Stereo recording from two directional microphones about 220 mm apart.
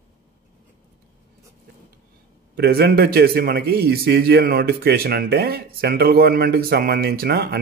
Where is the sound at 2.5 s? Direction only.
45° right (ahead or behind).